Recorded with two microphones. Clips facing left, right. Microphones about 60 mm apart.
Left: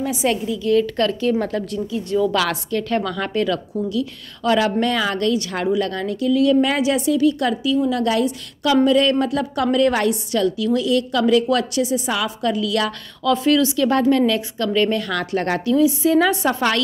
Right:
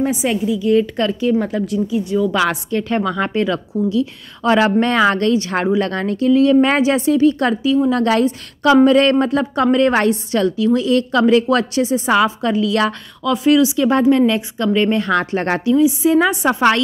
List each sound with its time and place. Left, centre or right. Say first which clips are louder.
0.2 s a woman's voice: right 3 dB; centre; by 12.9 s right
13.2 s a woman's voice: right 3 dB; centre; by 15.6 s right
15.6 s a woman's voice: right 3 dB; centre